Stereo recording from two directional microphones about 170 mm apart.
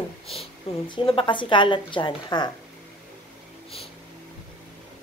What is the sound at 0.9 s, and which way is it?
A woman's voice, 30° left (ahead or behind).